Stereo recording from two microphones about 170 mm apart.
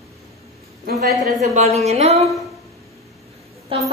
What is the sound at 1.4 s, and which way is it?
Speech, 40° right (ahead or behind).